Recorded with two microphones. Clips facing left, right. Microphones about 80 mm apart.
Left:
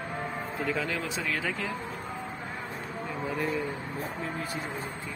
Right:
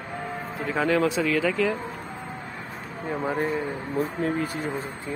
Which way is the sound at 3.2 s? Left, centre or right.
Right.